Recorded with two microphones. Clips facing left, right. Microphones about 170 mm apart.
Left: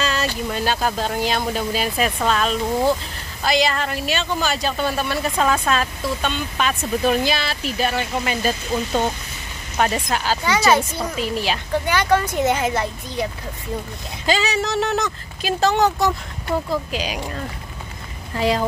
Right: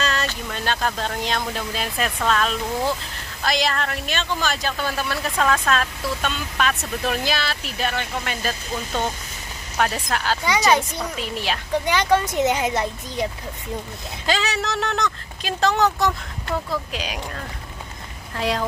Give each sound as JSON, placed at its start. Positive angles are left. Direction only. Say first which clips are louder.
{"t": 0.0, "sound": "a sound", "louder": "left 2 dB", "side_deg": 0}
{"t": 0.3, "sound": "speech", "louder": "left 4 dB", "side_deg": 5}
{"t": 11.8, "sound": "speech", "louder": "even", "side_deg": -15}
{"t": 14.2, "sound": "speech", "louder": "left 3 dB", "side_deg": 0}